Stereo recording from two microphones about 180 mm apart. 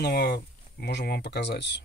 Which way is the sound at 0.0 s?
60° left (ahead or behind).